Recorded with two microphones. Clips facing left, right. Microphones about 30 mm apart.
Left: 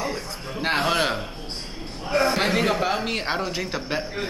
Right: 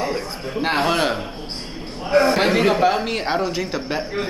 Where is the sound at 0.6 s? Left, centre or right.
Centre.